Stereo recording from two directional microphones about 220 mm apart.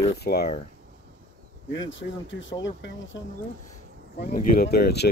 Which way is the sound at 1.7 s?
60° left (ahead or behind).